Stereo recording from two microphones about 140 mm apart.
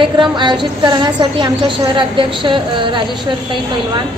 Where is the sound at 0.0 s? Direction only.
35° right (ahead or behind).